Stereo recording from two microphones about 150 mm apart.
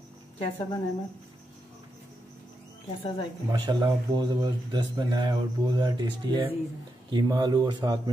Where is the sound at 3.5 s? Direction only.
30° right (ahead or behind).